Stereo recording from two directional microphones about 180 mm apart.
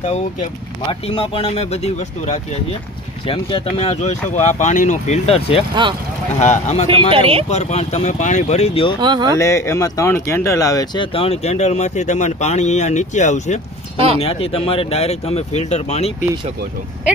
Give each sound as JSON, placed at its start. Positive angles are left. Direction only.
{"t": 0.0, "sound": "speech", "side_deg": 35}
{"t": 5.8, "sound": "speech", "side_deg": -25}
{"t": 6.4, "sound": "speech", "side_deg": 40}
{"t": 6.9, "sound": "speech", "side_deg": -30}
{"t": 7.4, "sound": "speech", "side_deg": 40}
{"t": 9.0, "sound": "speech", "side_deg": -25}
{"t": 9.4, "sound": "speech", "side_deg": 15}